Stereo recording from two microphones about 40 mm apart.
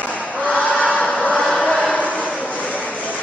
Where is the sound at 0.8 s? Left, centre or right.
Left.